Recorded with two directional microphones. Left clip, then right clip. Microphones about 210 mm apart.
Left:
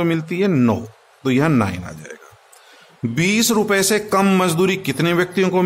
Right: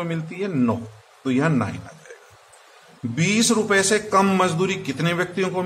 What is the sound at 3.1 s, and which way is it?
A man's voice, 50° left (ahead or behind).